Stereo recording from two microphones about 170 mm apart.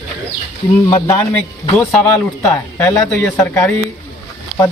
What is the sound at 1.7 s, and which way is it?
Speech, 10° left (ahead or behind).